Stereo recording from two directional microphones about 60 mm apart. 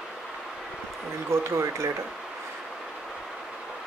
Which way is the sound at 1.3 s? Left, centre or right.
Right.